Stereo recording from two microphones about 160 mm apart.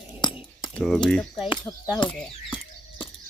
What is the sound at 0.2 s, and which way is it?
Keys jangling, 30° left (ahead or behind).